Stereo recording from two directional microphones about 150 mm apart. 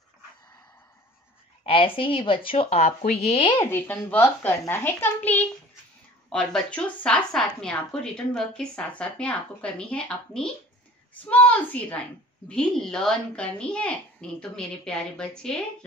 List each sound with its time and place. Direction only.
1.6 s speech: 35° left (ahead or behind)
3.6 s a woman's voice: 15° left (ahead or behind)